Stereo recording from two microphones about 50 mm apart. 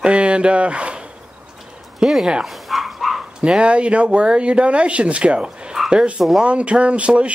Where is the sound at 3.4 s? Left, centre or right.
Right.